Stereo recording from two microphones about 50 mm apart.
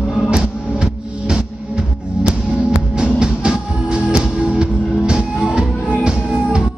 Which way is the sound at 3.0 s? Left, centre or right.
Centre.